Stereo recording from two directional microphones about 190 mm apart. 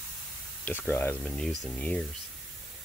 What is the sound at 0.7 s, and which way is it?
Speech, 10° left (ahead or behind).